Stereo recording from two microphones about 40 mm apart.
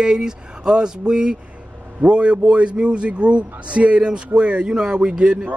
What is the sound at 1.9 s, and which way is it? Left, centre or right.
Speech, right.